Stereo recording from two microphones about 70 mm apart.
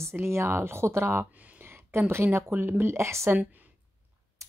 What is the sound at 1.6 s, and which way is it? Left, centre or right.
Speech, right.